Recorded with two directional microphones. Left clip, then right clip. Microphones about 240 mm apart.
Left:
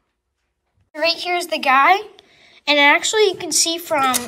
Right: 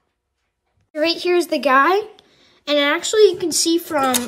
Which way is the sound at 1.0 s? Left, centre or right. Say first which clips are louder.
Right 1 dB; right.